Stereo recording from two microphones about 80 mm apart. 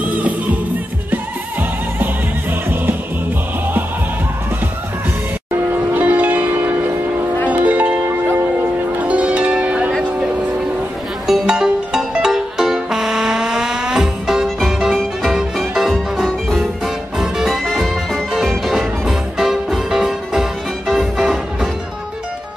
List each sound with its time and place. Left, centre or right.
0.0 s music: centre
5.7 s music: right
9.0 s zither: centre
11.2 s music: centre